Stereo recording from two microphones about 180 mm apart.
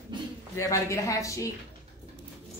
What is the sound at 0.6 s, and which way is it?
Speech, 15° left (ahead or behind).